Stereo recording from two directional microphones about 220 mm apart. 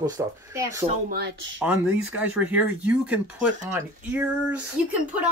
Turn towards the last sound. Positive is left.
turn(degrees=-5)  # may be behind; listen again after turning